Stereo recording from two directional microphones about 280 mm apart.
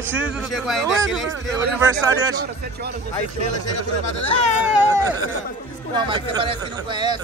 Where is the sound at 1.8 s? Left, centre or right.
Centre.